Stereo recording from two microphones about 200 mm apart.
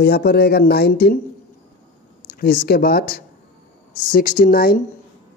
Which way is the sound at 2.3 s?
45° left (ahead or behind).